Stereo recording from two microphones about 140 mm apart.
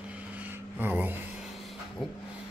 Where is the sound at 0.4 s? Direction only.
15° right (ahead or behind).